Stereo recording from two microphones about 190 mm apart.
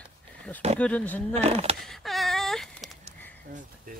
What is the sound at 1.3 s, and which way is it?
Speech, 35° right (ahead or behind).